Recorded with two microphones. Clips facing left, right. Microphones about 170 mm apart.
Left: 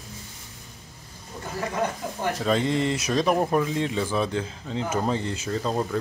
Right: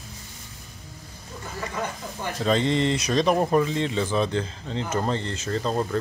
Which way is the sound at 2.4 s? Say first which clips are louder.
Right 2 dB; 5° left (ahead or behind).